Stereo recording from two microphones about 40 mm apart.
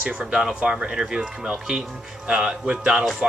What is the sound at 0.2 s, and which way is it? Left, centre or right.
Speech, right.